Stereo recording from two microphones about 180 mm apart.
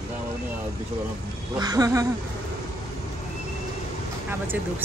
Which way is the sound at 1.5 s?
20° right (ahead or behind).